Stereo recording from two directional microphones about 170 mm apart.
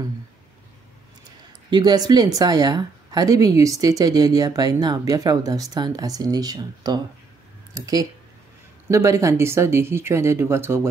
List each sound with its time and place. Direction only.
1.7 s speech: 25° right (ahead or behind)